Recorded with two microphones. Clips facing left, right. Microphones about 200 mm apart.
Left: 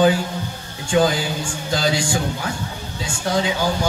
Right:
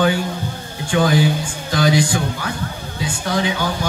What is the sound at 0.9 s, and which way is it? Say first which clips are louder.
Speech: right 2 dB; 25° left (ahead or behind).